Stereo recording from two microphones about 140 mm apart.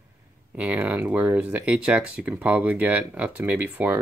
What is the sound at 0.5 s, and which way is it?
Speech, 10° right (ahead or behind).